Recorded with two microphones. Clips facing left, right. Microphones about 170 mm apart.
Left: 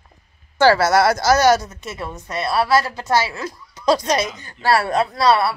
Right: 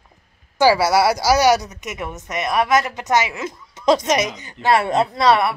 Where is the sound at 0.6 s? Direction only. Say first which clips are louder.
Left 1 dB; 10° right (ahead or behind).